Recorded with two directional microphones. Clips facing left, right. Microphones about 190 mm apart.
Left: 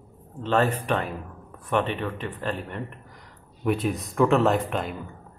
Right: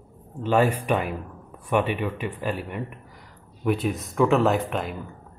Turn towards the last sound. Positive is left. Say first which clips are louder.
# even
turn(degrees=0)  # may be behind; listen again after turning